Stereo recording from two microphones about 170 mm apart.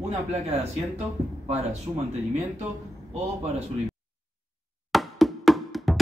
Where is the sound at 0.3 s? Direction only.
40° right (ahead or behind).